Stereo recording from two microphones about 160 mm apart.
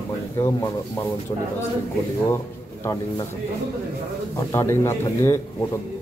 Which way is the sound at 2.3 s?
20° left (ahead or behind).